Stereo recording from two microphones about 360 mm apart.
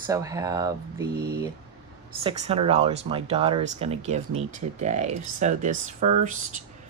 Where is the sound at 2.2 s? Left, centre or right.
Centre.